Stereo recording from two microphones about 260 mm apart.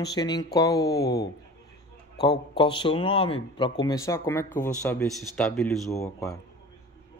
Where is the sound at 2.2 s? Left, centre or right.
Centre.